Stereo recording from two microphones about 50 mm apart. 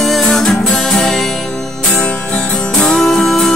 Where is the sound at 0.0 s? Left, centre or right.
Centre.